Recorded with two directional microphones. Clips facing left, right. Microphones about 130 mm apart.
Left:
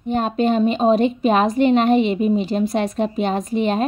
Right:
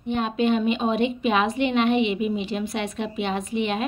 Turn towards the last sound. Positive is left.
turn(degrees=40)  # may be behind; listen again after turning